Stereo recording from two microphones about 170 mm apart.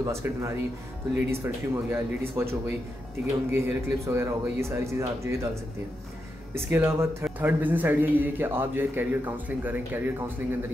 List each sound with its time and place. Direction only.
0.0 s a man's voice: 15° right (ahead or behind)